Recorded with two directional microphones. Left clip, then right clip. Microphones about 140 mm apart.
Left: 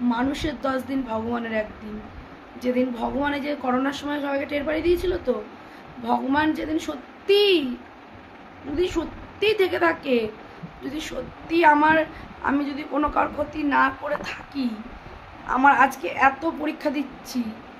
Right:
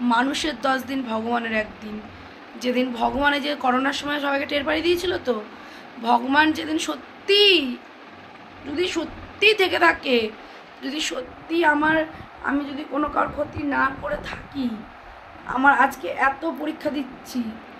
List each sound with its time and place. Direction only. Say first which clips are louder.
0.1 s a woman's voice: right 4 dB; 10° left (ahead or behind)
8.7 s a woman's voice: even; 20° left (ahead or behind)